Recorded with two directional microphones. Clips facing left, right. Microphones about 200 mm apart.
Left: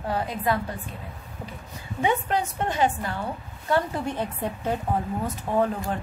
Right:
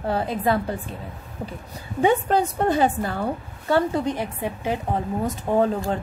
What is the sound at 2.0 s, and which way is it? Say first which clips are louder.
A woman's voice: right 5 dB; 35° right (ahead or behind).